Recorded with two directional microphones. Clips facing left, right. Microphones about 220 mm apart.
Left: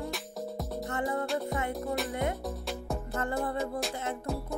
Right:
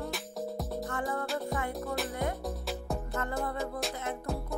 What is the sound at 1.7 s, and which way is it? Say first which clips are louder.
Music: left 2 dB; centre (ahead or behind).